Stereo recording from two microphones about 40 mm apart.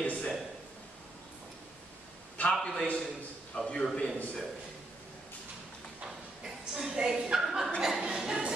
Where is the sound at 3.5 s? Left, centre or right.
Left.